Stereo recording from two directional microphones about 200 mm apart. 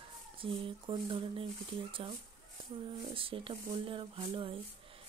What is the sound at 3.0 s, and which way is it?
Speech, 25° right (ahead or behind).